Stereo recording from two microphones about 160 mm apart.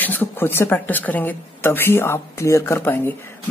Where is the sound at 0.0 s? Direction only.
10° left (ahead or behind).